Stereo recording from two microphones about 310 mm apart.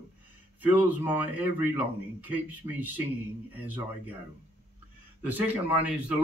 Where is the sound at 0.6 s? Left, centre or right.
Centre.